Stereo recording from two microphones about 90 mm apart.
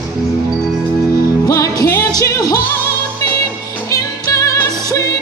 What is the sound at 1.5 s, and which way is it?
Music, 40° left (ahead or behind).